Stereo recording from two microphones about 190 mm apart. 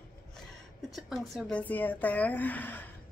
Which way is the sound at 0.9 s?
Centre (ahead or behind).